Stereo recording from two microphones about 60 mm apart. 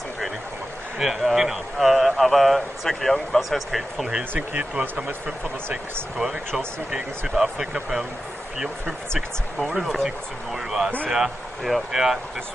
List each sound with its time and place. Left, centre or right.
0.9 s speech: centre
4.4 s speech: right
6.1 s speech: centre
9.7 s speech: centre